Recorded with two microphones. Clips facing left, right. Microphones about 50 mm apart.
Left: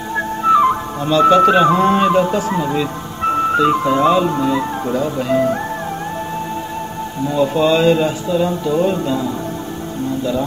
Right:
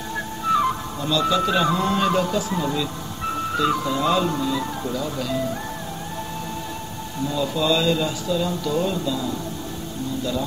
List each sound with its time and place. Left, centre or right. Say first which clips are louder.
0.5 s music: left 8 dB; left
1.1 s speech: left 10 dB; left
2.0 s music: left 7 dB; left
2.6 s speech: left 6 dB; left
4.1 s music: left 6 dB; left
4.4 s speech: left 7 dB; left
7.2 s speech: left 7 dB; left